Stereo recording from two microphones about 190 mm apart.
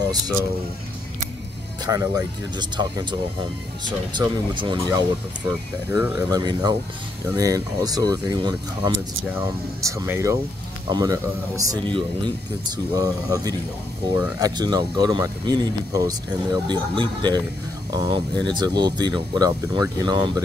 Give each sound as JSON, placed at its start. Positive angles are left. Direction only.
{"t": 1.9, "sound": "speech", "side_deg": -20}
{"t": 4.2, "sound": "speech", "side_deg": -25}
{"t": 5.9, "sound": "speech", "side_deg": -10}